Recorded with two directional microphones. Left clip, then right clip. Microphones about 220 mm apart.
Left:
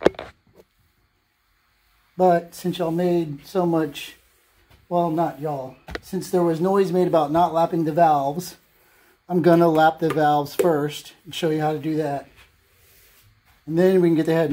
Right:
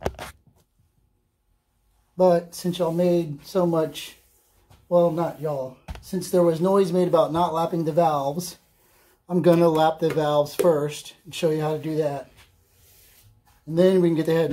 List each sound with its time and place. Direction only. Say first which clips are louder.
2.1 s a man's voice: left 1 dB; 20° left (ahead or behind)
13.7 s speech: left 1 dB; 20° left (ahead or behind)